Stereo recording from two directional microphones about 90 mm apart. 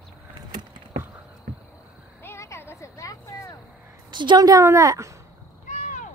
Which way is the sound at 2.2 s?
30° left (ahead or behind).